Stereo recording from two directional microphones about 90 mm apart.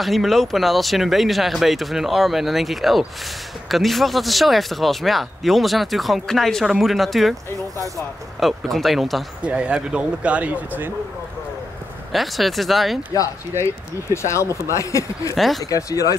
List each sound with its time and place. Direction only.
0.0 s speech: centre (ahead or behind)
8.4 s speech: centre (ahead or behind)
9.4 s speech: 10° right (ahead or behind)
12.1 s speech: centre (ahead or behind)
14.1 s speech: 30° left (ahead or behind)
15.3 s speech: centre (ahead or behind)
15.6 s speech: 40° left (ahead or behind)